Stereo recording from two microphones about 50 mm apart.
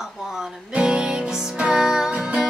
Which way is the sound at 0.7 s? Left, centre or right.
Centre.